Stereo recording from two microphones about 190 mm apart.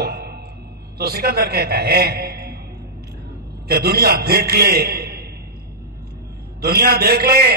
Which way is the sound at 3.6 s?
55° right (ahead or behind).